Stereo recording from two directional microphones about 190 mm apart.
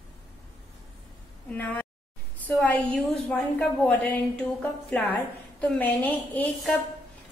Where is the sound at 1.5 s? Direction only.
10° left (ahead or behind).